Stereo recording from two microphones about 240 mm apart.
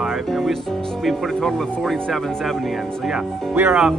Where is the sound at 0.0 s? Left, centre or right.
Centre.